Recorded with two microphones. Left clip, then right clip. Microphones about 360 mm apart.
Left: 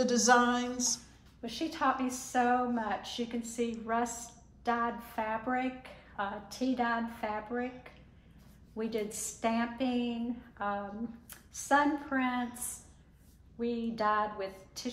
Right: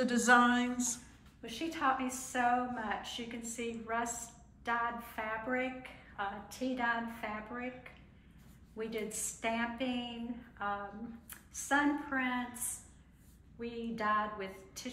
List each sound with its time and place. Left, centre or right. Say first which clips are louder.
0.0 s a sound: left 1 dB; centre
1.4 s a woman's voice: left 3 dB; left
8.7 s a woman's voice: left 4 dB; left
11.2 s a woman's voice: left 4 dB; left